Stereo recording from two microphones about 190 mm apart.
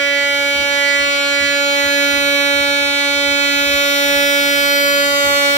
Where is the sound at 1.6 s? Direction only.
40° left (ahead or behind).